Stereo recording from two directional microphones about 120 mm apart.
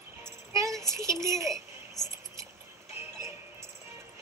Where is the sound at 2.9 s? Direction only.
25° right (ahead or behind).